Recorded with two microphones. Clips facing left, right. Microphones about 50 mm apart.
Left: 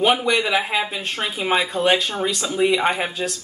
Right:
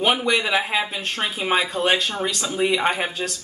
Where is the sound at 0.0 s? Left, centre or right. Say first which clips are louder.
Left 2 dB; centre.